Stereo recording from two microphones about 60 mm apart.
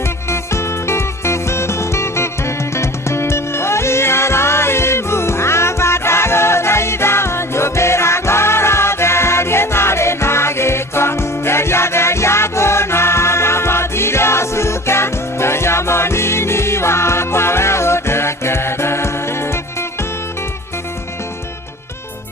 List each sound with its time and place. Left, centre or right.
0.3 s music: left